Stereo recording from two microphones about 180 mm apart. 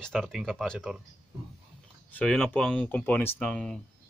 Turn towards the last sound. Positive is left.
turn(degrees=5)  # may be behind; listen again after turning